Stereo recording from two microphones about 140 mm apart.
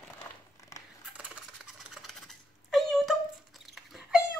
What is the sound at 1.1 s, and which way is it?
Typing, 5° right (ahead or behind).